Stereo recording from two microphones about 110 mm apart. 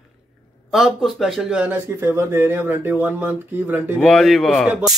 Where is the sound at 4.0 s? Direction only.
Centre (ahead or behind).